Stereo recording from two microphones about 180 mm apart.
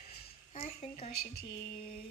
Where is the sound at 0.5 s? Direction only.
35° left (ahead or behind).